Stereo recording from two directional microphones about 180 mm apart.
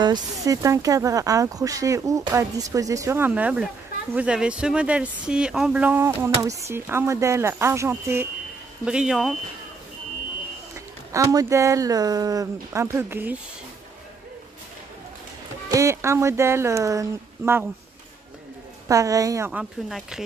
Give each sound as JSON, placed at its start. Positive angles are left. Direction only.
{"t": 0.0, "sound": "speech", "side_deg": -20}
{"t": 11.1, "sound": "speech", "side_deg": -20}
{"t": 15.7, "sound": "speech", "side_deg": -15}
{"t": 18.9, "sound": "speech", "side_deg": -20}
{"t": 19.6, "sound": "speech", "side_deg": -5}